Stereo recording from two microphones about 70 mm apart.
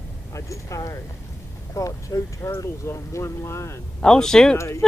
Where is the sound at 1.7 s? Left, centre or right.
Left.